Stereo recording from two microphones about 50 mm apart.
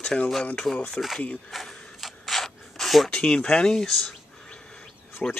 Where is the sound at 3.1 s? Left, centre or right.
Centre.